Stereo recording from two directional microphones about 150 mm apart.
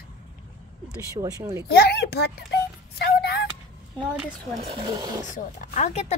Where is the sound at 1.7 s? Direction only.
90° left.